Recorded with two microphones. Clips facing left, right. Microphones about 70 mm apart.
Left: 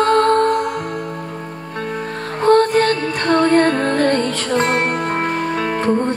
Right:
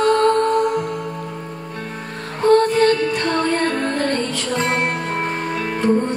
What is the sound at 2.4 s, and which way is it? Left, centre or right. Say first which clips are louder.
Music: left 1 dB; left.